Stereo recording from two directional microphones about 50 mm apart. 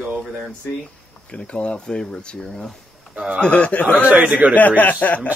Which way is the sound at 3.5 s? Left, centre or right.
Left.